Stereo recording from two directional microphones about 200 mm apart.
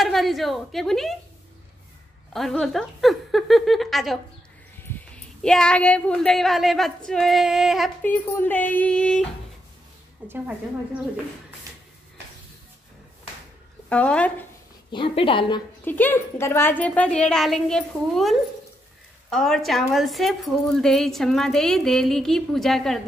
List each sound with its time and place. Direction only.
0.0 s a woman's voice: centre (ahead or behind)
2.3 s a woman's voice: centre (ahead or behind)
8.0 s a woman's voice: 10° left (ahead or behind)
10.2 s a woman's voice: 10° right (ahead or behind)
13.8 s speech: 5° left (ahead or behind)
14.9 s a woman's voice: 25° left (ahead or behind)
15.8 s a woman's voice: 10° left (ahead or behind)